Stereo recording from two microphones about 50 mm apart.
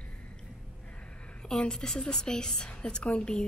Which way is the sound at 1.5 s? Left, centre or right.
Centre.